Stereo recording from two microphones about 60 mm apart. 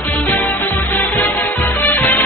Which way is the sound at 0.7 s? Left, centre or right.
Left.